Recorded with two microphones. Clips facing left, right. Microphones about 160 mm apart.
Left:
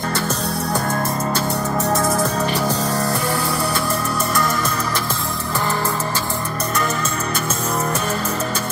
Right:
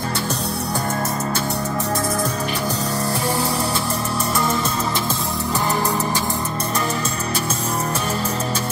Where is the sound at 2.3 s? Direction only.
85° left.